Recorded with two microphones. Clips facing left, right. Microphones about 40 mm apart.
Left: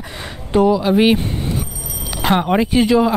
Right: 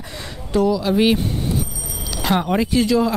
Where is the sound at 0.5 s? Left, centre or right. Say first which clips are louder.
Left 4 dB; left.